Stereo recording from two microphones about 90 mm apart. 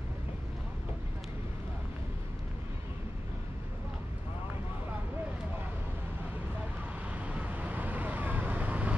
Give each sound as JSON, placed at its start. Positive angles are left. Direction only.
{"t": 7.2, "sound": "vehicle", "side_deg": -15}